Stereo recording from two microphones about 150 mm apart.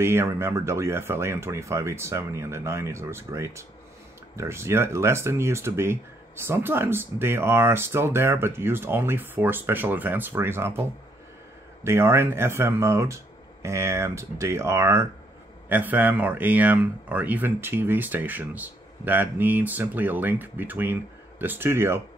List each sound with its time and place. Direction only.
0.0 s speech: 15° right (ahead or behind)